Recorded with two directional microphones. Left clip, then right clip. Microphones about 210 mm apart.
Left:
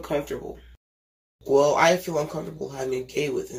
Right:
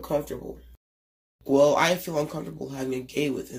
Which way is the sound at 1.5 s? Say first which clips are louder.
Left 2 dB; 45° right (ahead or behind).